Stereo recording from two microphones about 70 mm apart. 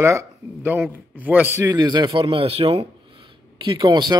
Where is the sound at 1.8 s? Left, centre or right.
Right.